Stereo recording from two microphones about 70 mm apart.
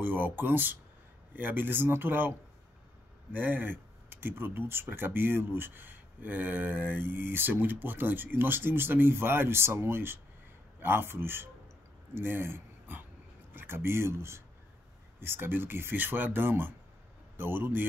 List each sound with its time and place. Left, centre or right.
0.0 s speech: right
3.3 s speech: right